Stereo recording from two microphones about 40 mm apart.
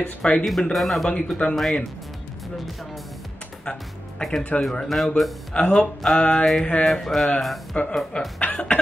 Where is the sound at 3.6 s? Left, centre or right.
Left.